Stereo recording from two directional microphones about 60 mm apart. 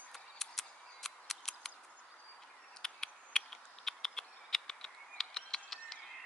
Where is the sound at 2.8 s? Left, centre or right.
Centre.